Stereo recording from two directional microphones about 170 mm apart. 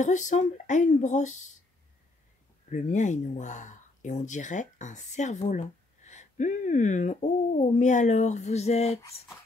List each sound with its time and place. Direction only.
0.0 s speech: 45° left (ahead or behind)
2.7 s speech: 45° left (ahead or behind)